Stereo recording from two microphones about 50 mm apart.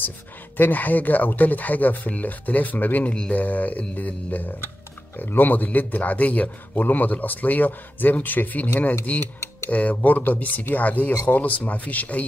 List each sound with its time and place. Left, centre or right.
0.6 s a man's voice: left